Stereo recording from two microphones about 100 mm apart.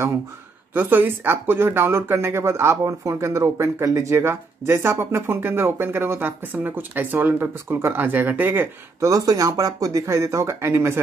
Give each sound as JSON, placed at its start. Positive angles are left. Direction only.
{"t": 0.7, "sound": "speech", "side_deg": -20}
{"t": 9.0, "sound": "speech", "side_deg": -35}